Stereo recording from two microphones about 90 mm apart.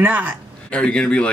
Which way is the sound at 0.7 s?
10° left (ahead or behind).